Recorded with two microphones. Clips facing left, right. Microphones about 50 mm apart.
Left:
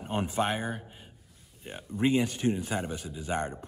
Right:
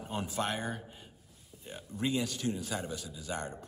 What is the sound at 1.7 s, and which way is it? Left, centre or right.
A man's voice, left.